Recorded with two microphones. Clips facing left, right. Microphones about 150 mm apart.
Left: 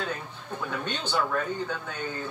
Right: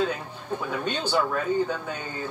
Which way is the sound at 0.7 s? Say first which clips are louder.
Right 3 dB; 10° right (ahead or behind).